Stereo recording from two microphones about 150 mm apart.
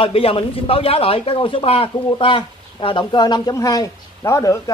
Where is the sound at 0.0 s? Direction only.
40° left (ahead or behind).